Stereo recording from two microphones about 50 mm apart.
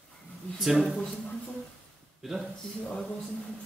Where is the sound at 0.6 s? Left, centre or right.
Centre.